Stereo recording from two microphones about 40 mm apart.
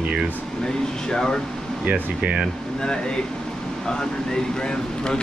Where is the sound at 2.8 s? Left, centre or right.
Centre.